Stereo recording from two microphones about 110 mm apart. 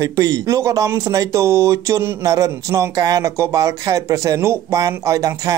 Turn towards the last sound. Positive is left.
turn(degrees=-30)  # may be behind; listen again after turning